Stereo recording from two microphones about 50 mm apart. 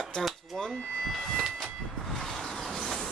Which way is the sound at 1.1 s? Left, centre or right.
Centre.